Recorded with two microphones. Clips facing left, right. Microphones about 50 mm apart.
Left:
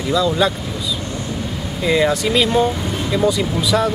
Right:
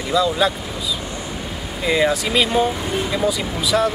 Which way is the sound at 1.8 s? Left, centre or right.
Centre.